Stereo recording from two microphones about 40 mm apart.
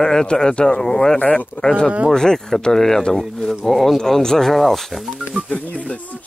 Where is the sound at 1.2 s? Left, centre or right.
Left.